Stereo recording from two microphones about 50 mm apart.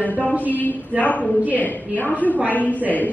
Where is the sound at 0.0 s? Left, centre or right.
Left.